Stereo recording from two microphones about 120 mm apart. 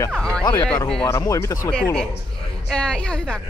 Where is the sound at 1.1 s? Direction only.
25° left (ahead or behind).